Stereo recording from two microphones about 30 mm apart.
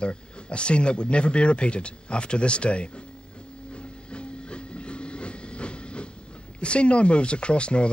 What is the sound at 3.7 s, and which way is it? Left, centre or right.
Train, left.